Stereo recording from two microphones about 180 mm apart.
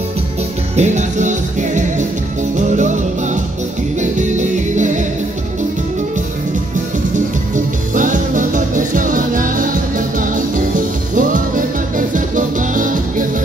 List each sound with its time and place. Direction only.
0.7 s music: 40° right (ahead or behind)
4.0 s music: 40° right (ahead or behind)
7.5 s music: 45° right (ahead or behind)